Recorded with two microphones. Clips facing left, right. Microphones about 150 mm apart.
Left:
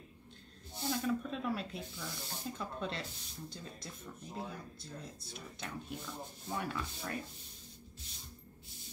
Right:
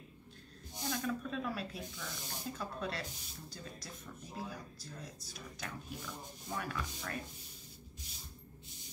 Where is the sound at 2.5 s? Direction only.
25° left (ahead or behind).